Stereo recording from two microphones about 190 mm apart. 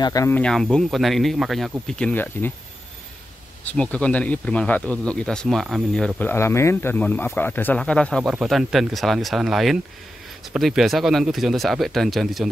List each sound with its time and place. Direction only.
0.0 s speech: 15° left (ahead or behind)
0.4 s speech: 5° left (ahead or behind)
3.7 s speech: 5° left (ahead or behind)